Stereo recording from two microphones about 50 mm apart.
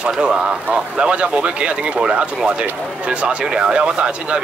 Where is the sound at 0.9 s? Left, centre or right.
Right.